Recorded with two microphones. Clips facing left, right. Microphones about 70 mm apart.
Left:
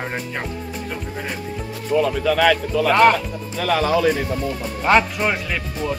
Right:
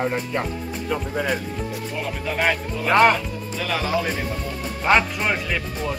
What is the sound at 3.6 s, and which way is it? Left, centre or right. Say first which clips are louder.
Speech: left 6 dB; left.